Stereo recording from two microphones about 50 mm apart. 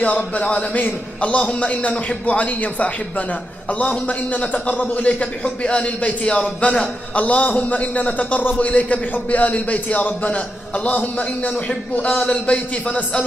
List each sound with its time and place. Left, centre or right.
0.0 s a man's voice: left
7.2 s a man's voice: left